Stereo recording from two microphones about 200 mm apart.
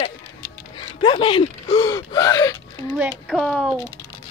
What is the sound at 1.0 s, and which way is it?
Speech, 25° left (ahead or behind).